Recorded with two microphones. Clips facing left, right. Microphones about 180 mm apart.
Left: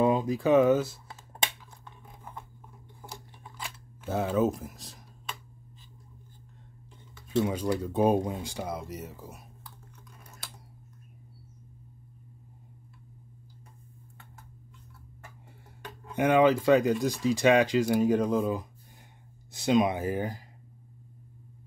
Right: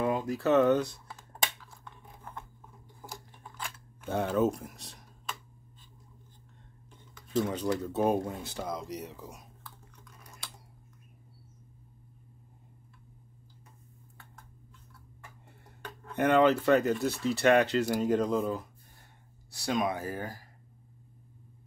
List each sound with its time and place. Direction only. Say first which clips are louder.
0.0 s speech: left 4 dB; 20° left (ahead or behind)
1.9 s scissors: even; 10° left (ahead or behind)
3.0 s scissors: even; centre (ahead or behind)
3.5 s speech: even; 5° left (ahead or behind)
7.2 s speech: left 2 dB; 10° left (ahead or behind)
15.8 s speech: left 1 dB; 15° left (ahead or behind)